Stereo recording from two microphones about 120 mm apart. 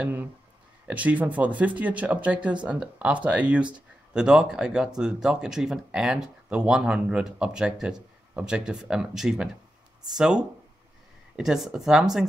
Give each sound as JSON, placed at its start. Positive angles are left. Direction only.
{"t": 0.0, "sound": "speech", "side_deg": -15}